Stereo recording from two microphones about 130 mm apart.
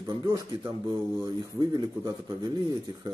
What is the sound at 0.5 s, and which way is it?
A man's voice, 35° right (ahead or behind).